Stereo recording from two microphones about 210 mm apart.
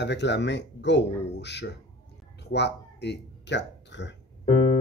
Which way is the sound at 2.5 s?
55° left (ahead or behind).